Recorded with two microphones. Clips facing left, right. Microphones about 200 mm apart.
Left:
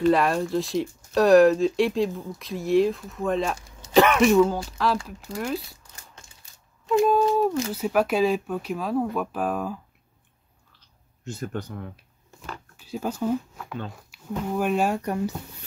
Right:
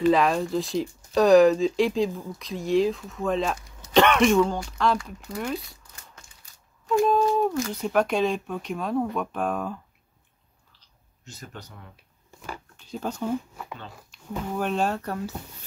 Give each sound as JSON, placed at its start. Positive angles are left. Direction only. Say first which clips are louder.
{"t": 0.0, "sound": "speech", "louder": "even", "side_deg": 0}
{"t": 7.1, "sound": "speech", "louder": "left 1 dB", "side_deg": 5}
{"t": 11.2, "sound": "speech", "louder": "left 11 dB", "side_deg": 55}
{"t": 12.7, "sound": "speech", "louder": "left 3 dB", "side_deg": 5}